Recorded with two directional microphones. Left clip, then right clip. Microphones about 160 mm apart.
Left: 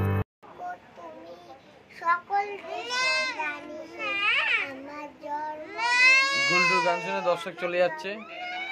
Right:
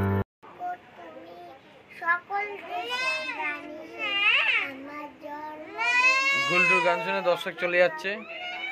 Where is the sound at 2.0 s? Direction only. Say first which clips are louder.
Left 2 dB; 15° left (ahead or behind).